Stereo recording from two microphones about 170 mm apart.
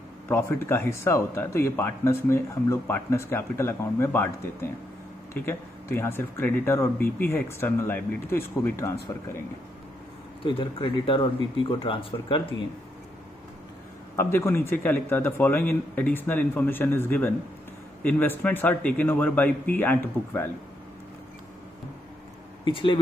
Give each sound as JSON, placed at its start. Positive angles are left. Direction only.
{"t": 0.3, "sound": "speech", "side_deg": 15}
{"t": 10.4, "sound": "speech", "side_deg": 30}
{"t": 14.1, "sound": "speech", "side_deg": 15}
{"t": 22.7, "sound": "speech", "side_deg": 30}